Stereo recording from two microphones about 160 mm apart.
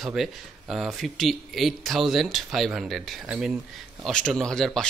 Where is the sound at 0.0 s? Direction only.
Centre (ahead or behind).